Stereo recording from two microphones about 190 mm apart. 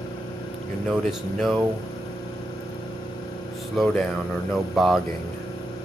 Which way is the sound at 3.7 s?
Centre (ahead or behind).